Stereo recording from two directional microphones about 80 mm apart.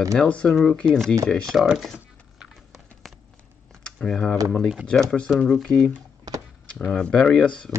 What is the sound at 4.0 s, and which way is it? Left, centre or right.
Speech, centre.